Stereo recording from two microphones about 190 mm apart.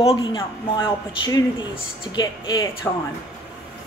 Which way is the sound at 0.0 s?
25° left (ahead or behind).